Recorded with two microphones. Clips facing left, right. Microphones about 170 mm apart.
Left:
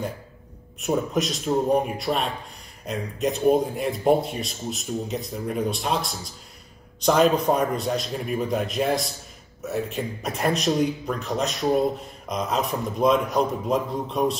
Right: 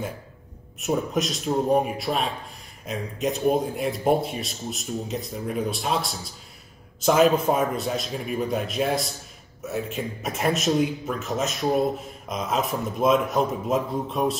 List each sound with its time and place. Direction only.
0.7 s speech: centre (ahead or behind)